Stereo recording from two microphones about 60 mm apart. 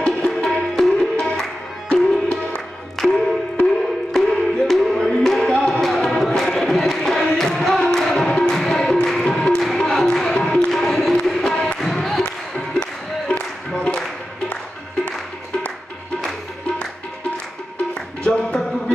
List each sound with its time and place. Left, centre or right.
0.0 s music: centre
12.2 s music: centre
13.3 s singing: left
18.2 s music: centre